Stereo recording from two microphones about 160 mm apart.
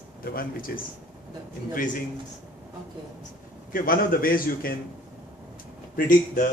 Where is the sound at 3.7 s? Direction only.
60° left (ahead or behind).